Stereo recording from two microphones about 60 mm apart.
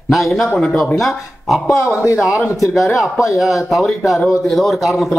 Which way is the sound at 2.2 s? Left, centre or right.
Left.